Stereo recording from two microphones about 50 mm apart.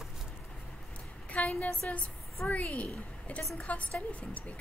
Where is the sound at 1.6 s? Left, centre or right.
Left.